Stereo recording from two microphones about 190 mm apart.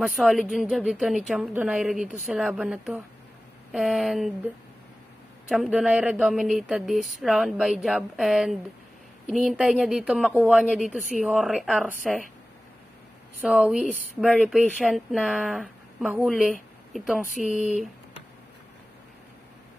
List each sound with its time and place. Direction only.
0.0 s speech: centre (ahead or behind)
5.5 s speech: centre (ahead or behind)
10.2 s speech: 5° left (ahead or behind)
10.5 s speech: 5° right (ahead or behind)
13.5 s speech: 5° right (ahead or behind)
17.3 s speech: 40° left (ahead or behind)